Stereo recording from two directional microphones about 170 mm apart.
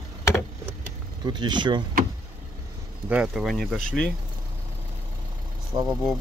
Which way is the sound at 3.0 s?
5° right (ahead or behind).